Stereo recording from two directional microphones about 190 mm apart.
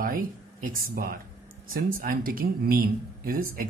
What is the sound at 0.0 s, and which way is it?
Speech, 50° right (ahead or behind).